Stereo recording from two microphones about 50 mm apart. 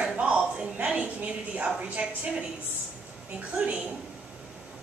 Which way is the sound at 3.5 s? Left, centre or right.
Right.